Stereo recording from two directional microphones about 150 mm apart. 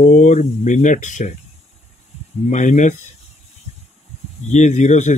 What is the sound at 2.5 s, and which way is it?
Speech, 55° left (ahead or behind).